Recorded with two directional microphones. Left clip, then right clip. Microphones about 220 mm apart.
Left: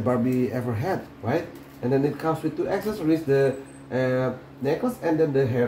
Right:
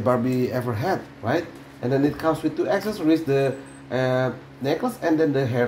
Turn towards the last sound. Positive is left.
turn(degrees=-35)  # may be behind; listen again after turning